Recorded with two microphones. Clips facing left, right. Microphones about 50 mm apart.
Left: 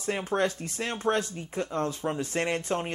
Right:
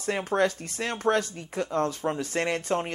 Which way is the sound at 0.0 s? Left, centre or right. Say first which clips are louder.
Right 2 dB; right.